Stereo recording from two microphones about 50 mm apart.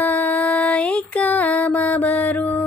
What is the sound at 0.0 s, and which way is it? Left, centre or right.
Music, left.